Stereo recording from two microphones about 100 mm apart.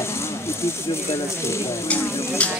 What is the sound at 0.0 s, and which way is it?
Speech, 25° left (ahead or behind).